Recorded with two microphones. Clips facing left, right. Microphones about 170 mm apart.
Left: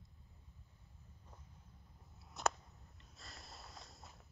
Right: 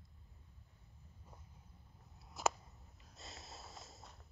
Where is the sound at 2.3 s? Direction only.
5° right (ahead or behind).